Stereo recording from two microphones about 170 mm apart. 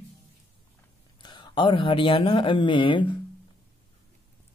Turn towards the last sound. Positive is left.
turn(degrees=30)  # may be behind; listen again after turning